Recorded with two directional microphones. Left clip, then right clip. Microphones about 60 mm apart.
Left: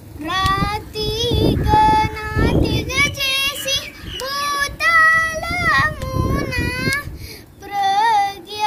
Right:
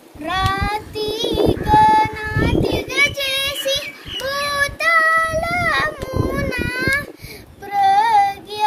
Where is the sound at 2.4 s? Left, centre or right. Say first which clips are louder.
Even; right.